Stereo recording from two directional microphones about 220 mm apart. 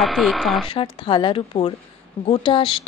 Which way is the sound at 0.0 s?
Centre (ahead or behind).